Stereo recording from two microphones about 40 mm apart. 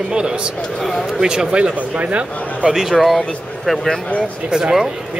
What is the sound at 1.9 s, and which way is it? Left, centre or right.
Speech, right.